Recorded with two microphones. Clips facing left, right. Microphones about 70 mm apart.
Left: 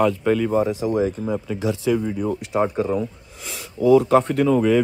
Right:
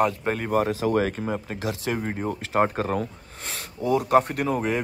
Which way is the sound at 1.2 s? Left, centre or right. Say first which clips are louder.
Left 5 dB; right.